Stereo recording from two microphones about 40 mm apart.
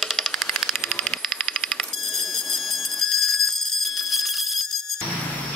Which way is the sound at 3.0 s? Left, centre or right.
Centre.